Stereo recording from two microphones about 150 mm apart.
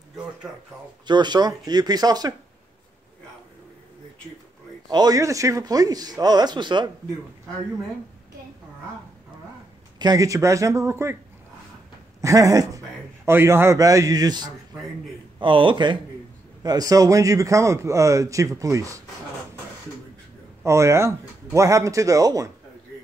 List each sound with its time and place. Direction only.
0.5 s speech: 5° right (ahead or behind)
1.0 s a man's voice: 30° right (ahead or behind)
4.8 s a man's voice: 25° right (ahead or behind)
9.9 s a man's voice: 25° right (ahead or behind)
12.2 s a man's voice: 20° right (ahead or behind)
20.6 s a man's voice: 20° right (ahead or behind)